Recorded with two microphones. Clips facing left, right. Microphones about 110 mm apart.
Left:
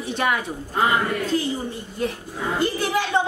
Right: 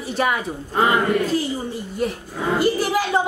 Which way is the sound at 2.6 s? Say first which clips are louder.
Right 3 dB; 5° right (ahead or behind).